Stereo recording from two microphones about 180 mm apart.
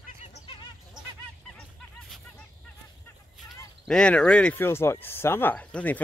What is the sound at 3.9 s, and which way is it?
Speech, 5° left (ahead or behind).